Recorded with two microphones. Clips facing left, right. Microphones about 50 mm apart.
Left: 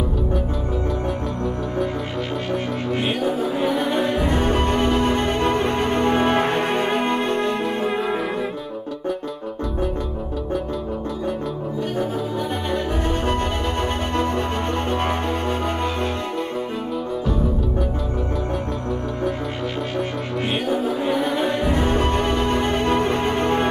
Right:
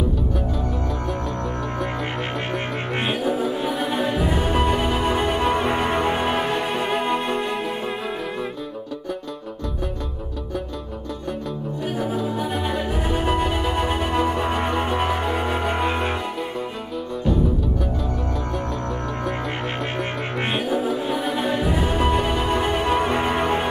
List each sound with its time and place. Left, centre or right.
3.1 s music: centre
12.0 s music: centre
20.5 s music: centre